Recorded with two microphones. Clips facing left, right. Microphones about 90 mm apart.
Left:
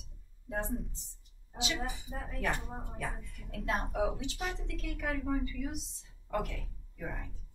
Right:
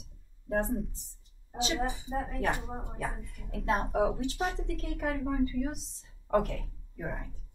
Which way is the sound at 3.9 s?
35° right (ahead or behind).